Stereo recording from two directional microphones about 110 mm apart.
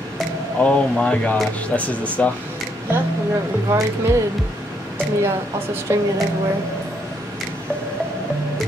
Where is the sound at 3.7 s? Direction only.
20° right (ahead or behind).